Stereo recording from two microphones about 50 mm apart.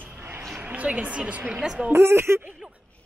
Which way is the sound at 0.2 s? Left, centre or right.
Right.